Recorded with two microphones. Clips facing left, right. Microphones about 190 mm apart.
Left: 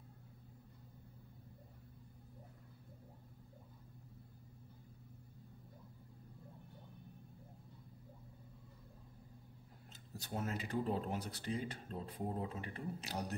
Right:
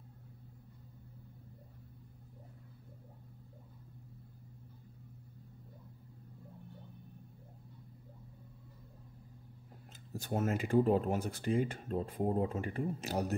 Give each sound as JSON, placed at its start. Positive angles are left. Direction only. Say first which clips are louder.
{"t": 10.1, "sound": "speech", "louder": "right 8 dB", "side_deg": -45}